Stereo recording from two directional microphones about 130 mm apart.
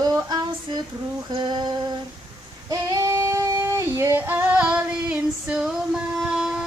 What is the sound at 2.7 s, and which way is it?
Female singing, 25° right (ahead or behind).